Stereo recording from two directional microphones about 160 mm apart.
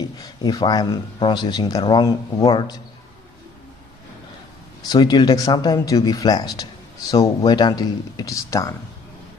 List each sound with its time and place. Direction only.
0.2 s speech: 25° left (ahead or behind)
4.8 s speech: 25° left (ahead or behind)